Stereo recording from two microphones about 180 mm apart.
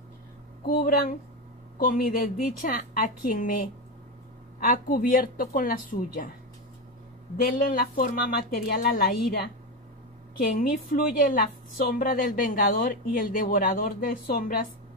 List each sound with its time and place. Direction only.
0.8 s a woman's voice: 55° left (ahead or behind)
4.6 s a woman's voice: 55° left (ahead or behind)
7.4 s a woman's voice: 50° left (ahead or behind)
10.6 s a woman's voice: 55° left (ahead or behind)